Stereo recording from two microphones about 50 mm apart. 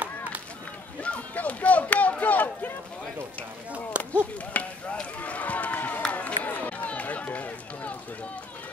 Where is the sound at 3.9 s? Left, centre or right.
Right.